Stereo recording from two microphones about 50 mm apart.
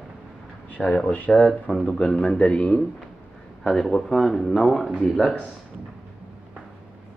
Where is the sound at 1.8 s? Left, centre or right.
Centre.